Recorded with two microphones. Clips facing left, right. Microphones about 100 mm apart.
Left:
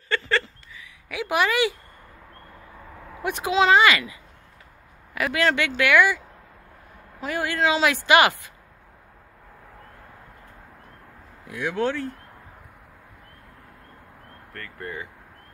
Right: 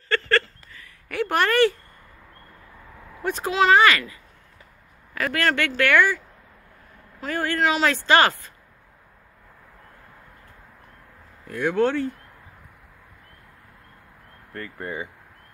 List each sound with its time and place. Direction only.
0.7 s speech: 5° left (ahead or behind)
3.2 s speech: 15° left (ahead or behind)
11.4 s speech: 5° left (ahead or behind)
14.5 s speech: 15° right (ahead or behind)